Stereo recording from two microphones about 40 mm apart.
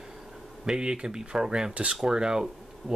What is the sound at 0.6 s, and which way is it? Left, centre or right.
Speech, right.